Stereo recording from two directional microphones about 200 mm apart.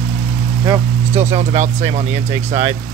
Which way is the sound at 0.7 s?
30° right (ahead or behind).